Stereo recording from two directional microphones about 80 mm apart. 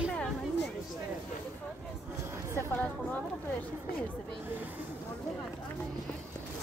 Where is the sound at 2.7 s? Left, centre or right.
Centre.